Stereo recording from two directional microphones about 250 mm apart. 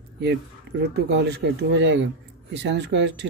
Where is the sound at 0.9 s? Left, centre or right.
Right.